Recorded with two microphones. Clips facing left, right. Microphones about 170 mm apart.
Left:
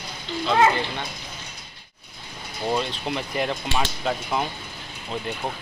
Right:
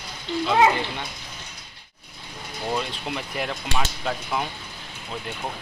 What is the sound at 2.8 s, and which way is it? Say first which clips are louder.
Speech: left 3 dB; 5° right (ahead or behind).